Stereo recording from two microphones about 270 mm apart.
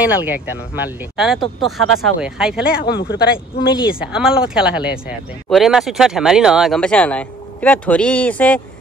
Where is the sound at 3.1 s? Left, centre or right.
Left.